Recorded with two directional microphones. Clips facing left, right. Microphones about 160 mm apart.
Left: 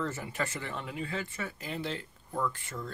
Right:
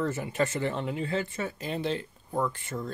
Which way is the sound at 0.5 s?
30° right (ahead or behind).